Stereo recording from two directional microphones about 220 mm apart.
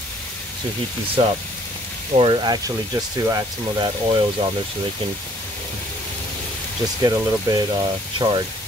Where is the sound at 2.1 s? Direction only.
20° right (ahead or behind).